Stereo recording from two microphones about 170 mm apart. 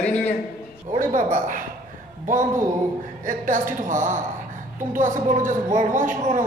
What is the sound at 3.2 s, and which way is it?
A woman's voice, 50° right (ahead or behind).